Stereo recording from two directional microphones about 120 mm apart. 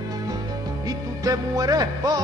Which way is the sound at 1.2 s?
30° right (ahead or behind).